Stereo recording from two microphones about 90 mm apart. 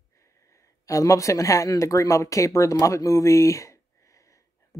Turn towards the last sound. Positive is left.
turn(degrees=35)  # may be behind; listen again after turning